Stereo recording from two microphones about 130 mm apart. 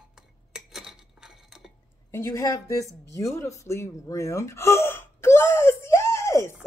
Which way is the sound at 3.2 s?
25° left (ahead or behind).